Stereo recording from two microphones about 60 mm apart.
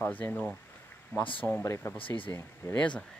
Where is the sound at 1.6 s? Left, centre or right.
Left.